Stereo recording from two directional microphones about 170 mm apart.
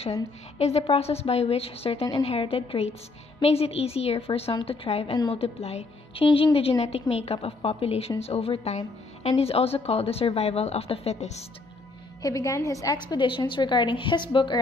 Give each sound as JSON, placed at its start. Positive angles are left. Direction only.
{"t": 0.0, "sound": "a woman's voice", "side_deg": 40}
{"t": 12.2, "sound": "a woman's voice", "side_deg": 20}